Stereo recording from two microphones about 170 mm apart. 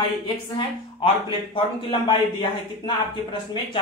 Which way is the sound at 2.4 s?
30° left (ahead or behind).